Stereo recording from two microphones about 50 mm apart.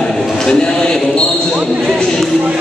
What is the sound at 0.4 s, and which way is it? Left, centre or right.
Basketball bounce, centre.